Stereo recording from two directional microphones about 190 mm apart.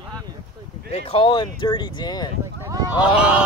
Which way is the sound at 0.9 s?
30° left (ahead or behind).